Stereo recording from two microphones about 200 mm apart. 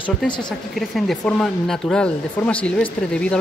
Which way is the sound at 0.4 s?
Centre (ahead or behind).